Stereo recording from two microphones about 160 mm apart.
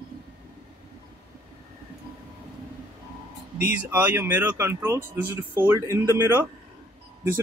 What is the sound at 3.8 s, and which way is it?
Speech, 10° right (ahead or behind).